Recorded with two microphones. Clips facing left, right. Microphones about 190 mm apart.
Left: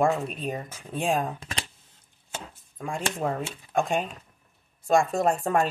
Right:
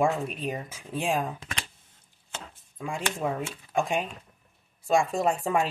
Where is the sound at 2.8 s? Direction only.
5° right (ahead or behind).